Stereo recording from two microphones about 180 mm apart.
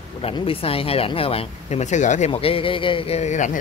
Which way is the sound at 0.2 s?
30° left (ahead or behind).